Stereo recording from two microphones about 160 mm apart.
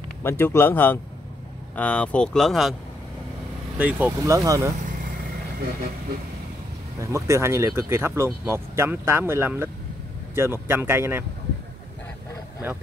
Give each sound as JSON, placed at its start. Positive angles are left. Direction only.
{"t": 0.2, "sound": "speech", "side_deg": 15}
{"t": 3.7, "sound": "speech", "side_deg": -10}
{"t": 4.2, "sound": "speech", "side_deg": -20}
{"t": 4.8, "sound": "vehicle", "side_deg": -65}
{"t": 7.0, "sound": "speech", "side_deg": -20}